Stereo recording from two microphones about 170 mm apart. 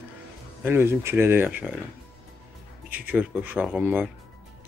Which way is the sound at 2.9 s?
10° right (ahead or behind).